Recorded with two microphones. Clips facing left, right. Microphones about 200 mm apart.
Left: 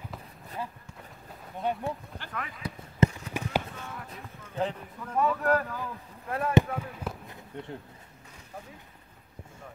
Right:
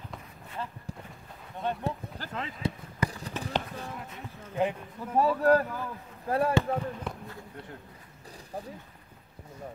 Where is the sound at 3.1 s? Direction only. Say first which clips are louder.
Right 2 dB; 35° right (ahead or behind).